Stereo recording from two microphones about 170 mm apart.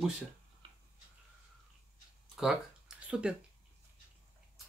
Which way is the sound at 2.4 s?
5° right (ahead or behind).